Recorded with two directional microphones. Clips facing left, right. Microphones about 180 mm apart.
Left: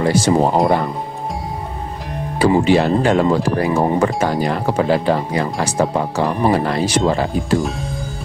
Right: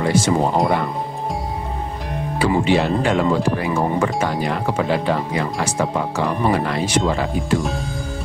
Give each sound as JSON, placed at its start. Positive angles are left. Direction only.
{"t": 0.0, "sound": "speech", "side_deg": 35}
{"t": 2.3, "sound": "speech", "side_deg": 40}
{"t": 7.5, "sound": "speech", "side_deg": 0}